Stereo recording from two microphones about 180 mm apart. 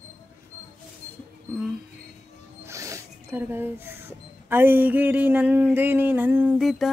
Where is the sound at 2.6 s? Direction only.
15° right (ahead or behind).